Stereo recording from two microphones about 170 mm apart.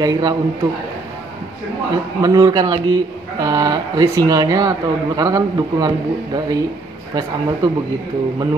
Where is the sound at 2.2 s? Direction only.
20° right (ahead or behind).